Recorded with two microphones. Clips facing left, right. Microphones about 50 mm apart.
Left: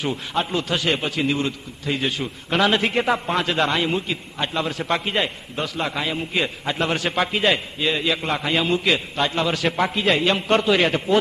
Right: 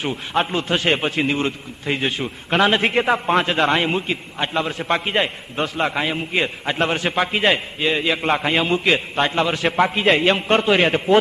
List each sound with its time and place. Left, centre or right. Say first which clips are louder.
0.3 s a man's voice: right 4 dB; right